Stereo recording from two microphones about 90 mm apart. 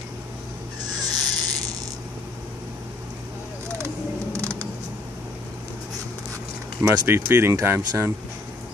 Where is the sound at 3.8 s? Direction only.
30° right (ahead or behind).